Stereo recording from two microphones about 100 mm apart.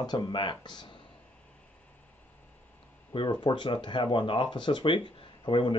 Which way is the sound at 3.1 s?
55° left (ahead or behind).